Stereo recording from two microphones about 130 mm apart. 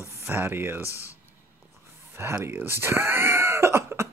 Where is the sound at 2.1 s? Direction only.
20° right (ahead or behind).